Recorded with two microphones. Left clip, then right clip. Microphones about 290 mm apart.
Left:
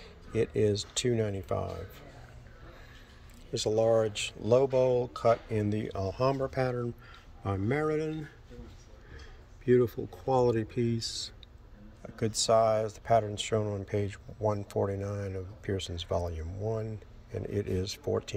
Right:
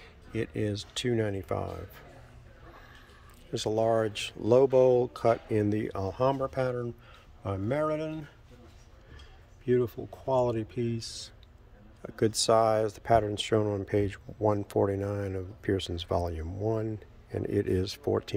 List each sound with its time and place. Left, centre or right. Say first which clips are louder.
0.0 s speech: left 4 dB; centre
3.5 s speech: left 1 dB; centre
9.7 s speech: left 2 dB; centre
12.0 s speech: right 4 dB; right